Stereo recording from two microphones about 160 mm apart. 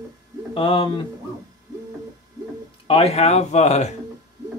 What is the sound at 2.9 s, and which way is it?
Speech, 40° left (ahead or behind).